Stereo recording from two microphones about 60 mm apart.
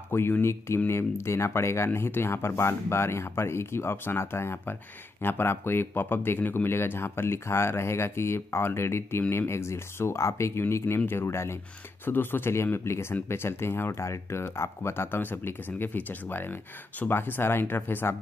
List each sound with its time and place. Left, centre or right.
0.4 s speech: left
12.0 s speech: left